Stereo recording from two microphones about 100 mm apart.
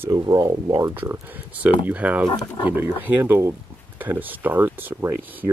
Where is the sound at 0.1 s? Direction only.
40° right (ahead or behind).